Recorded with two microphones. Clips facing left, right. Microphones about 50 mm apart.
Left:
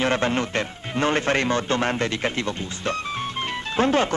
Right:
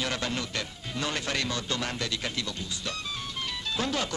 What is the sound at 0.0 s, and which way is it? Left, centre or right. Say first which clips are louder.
A woman's voice: left 9 dB; left.